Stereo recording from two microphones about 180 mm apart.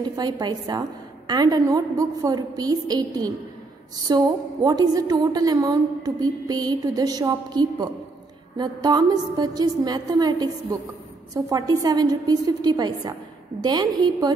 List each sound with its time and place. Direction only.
0.1 s a woman's voice: 25° right (ahead or behind)